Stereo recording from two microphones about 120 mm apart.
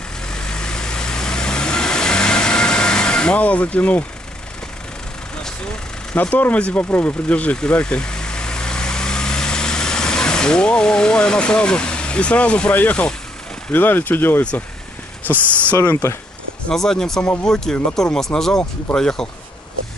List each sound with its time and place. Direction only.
0.3 s vehicle: 5° left (ahead or behind)
6.1 s speech: 15° left (ahead or behind)
16.6 s speech: 5° left (ahead or behind)